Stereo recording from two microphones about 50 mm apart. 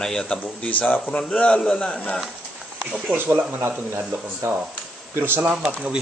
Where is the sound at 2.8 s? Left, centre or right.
Centre.